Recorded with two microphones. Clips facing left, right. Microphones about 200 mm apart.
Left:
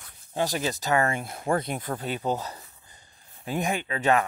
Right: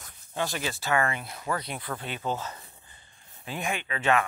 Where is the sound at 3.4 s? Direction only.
40° left (ahead or behind).